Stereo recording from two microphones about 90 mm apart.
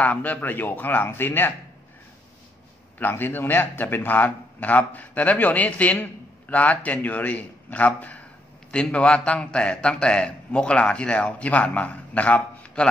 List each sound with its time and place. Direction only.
0.0 s speech: 20° left (ahead or behind)
3.0 s a man's voice: 20° left (ahead or behind)